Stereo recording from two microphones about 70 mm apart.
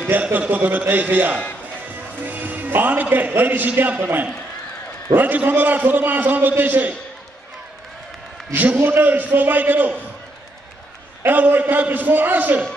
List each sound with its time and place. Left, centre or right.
0.1 s a man's voice: right
8.5 s a man's voice: right
11.2 s a man's voice: right